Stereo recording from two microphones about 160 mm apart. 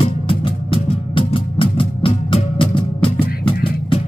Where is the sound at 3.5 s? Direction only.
70° left (ahead or behind).